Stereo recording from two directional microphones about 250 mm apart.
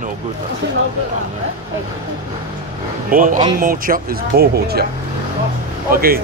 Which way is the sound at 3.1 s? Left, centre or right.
Right.